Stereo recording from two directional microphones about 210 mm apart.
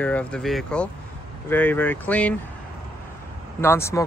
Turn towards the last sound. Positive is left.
turn(degrees=15)  # may be behind; listen again after turning